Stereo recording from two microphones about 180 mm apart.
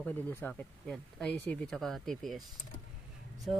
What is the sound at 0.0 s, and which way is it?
Speech, 10° left (ahead or behind).